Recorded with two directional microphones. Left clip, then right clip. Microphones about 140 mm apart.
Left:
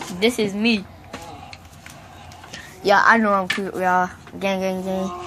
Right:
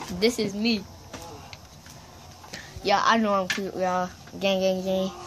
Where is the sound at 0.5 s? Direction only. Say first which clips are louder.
Left 6 dB; centre (ahead or behind).